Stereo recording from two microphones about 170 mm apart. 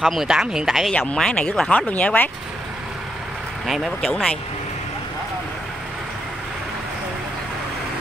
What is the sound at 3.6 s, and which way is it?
Speech, centre (ahead or behind).